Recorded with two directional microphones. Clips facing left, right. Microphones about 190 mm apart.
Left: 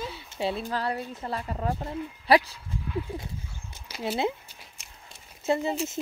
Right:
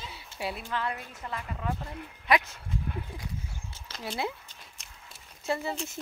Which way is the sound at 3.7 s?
15° left (ahead or behind).